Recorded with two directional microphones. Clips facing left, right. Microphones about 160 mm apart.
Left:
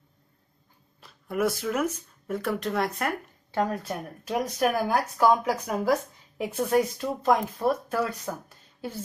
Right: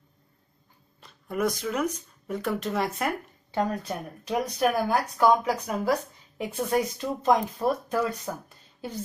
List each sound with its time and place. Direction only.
1.0 s speech: 5° left (ahead or behind)